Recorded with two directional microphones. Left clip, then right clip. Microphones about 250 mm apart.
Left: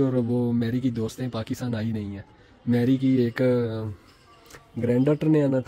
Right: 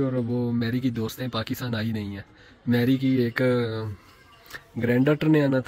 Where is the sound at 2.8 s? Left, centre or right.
Centre.